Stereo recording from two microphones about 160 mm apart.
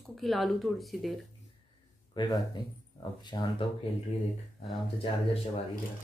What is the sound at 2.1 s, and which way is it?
Speech, 25° left (ahead or behind).